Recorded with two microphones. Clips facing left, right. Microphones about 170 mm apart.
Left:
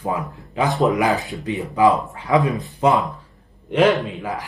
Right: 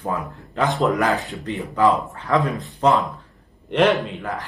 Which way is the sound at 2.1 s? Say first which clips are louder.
Left 2 dB; 15° left (ahead or behind).